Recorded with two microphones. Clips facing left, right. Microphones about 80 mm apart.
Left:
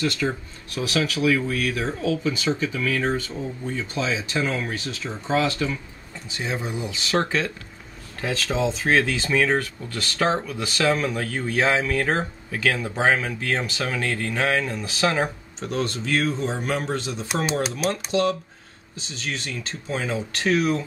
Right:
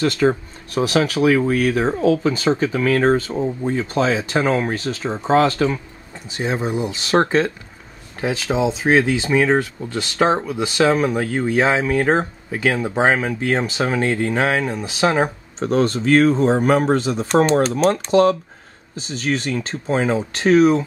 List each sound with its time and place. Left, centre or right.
0.0 s speech: right
6.3 s speech: right
8.2 s speech: centre
15.6 s speech: right